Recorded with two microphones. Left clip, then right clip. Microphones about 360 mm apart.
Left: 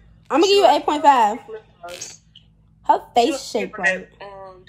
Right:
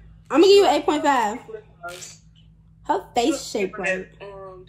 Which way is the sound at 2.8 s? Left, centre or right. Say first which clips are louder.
Left 5 dB; centre.